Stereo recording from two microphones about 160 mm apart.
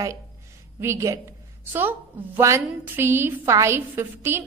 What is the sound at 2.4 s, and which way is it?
A woman's voice, 15° right (ahead or behind).